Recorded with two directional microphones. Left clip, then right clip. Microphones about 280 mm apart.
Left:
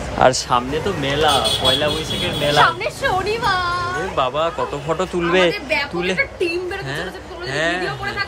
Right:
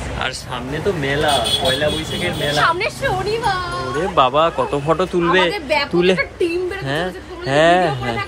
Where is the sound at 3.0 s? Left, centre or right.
Centre.